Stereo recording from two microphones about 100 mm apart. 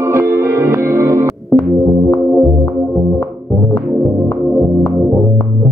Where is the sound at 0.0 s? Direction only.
30° right (ahead or behind).